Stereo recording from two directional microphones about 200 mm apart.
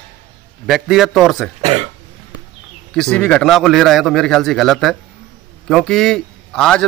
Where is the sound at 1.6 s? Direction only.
35° right (ahead or behind).